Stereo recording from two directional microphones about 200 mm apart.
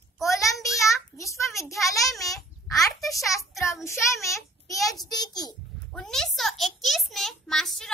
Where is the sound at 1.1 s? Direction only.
15° left (ahead or behind).